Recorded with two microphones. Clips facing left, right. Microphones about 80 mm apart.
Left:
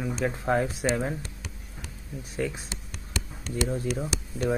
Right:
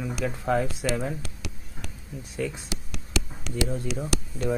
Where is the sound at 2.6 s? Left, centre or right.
Right.